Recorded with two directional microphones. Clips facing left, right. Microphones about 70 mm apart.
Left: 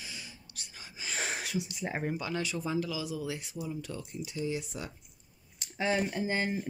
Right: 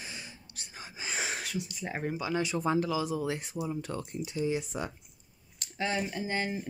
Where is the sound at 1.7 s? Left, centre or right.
Centre.